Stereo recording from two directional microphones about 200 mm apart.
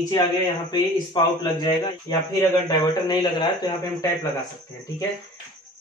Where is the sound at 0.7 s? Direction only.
20° left (ahead or behind).